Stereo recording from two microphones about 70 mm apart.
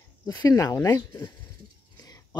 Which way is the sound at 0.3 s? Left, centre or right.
Left.